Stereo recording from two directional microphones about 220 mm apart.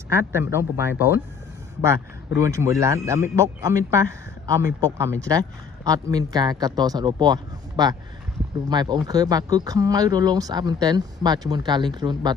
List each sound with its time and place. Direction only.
0.1 s speech: 10° right (ahead or behind)